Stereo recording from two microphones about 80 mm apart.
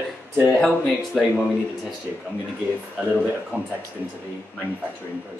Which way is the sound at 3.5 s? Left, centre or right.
Centre.